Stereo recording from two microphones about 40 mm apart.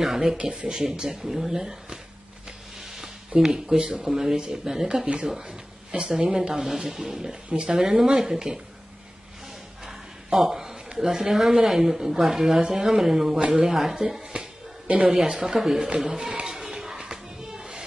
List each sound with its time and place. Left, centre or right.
0.0 s a woman's voice: centre
0.4 s speech: right
0.7 s a woman's voice: centre
2.8 s a sound: centre
3.4 s a woman's voice: centre
7.4 s speech: right
7.7 s a woman's voice: centre
10.4 s a woman's voice: centre
13.4 s speech: right
13.7 s a woman's voice: centre
14.3 s music: right
15.0 s a woman's voice: centre
16.8 s music: centre